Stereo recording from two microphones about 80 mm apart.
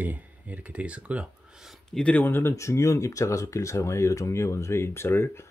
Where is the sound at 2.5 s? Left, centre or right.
Left.